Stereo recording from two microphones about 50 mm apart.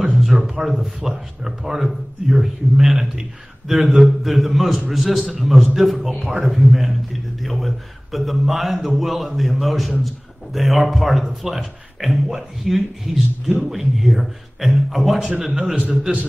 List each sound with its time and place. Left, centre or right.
0.2 s a man's voice: centre
15.9 s a man's voice: right